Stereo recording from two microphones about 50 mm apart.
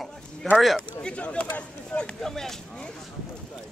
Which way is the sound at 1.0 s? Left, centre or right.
Left.